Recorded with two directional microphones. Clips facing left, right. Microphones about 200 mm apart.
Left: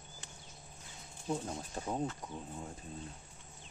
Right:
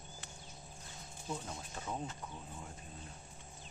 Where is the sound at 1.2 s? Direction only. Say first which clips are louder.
Left 6 dB; 35° left (ahead or behind).